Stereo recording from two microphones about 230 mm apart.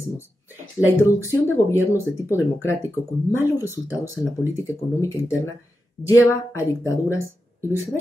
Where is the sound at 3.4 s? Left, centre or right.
Centre.